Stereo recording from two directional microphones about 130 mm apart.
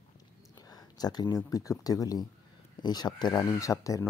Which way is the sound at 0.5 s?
30° left (ahead or behind).